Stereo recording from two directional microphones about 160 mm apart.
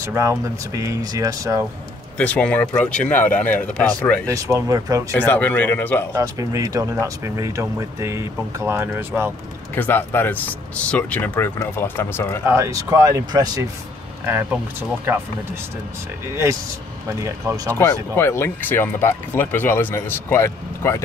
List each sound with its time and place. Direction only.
0.0 s speech: 20° right (ahead or behind)
2.1 s speech: 10° left (ahead or behind)
4.3 s speech: 20° right (ahead or behind)
5.1 s speech: 10° left (ahead or behind)
6.1 s speech: 20° right (ahead or behind)
9.8 s speech: 10° left (ahead or behind)
12.4 s speech: 20° right (ahead or behind)
14.2 s speech: 10° right (ahead or behind)
17.6 s speech: 15° left (ahead or behind)